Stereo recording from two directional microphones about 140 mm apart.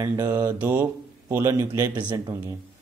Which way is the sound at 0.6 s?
15° right (ahead or behind).